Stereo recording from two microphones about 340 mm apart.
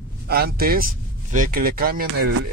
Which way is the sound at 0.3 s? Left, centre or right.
Right.